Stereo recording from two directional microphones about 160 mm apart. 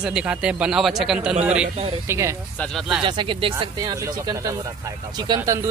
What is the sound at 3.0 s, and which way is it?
Speech, 30° right (ahead or behind).